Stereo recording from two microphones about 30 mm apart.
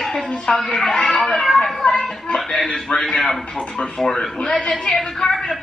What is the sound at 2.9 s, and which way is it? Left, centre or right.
Speech, left.